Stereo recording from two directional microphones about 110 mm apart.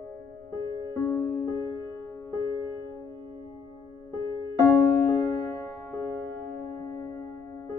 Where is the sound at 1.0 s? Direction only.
20° left (ahead or behind).